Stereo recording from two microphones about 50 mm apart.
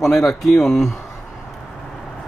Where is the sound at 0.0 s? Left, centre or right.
Centre.